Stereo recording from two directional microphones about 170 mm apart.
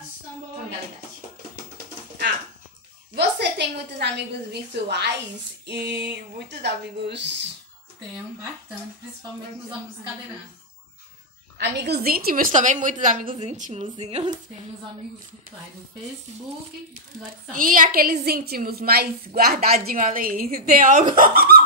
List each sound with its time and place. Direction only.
3.2 s a woman's voice: 80° right
5.7 s female singing: 85° right
6.6 s speech: 90° right
11.5 s a woman's voice: 75° right (ahead or behind); by 14.3 s 35° right (ahead or behind)
17.6 s a woman's voice: 55° right (ahead or behind)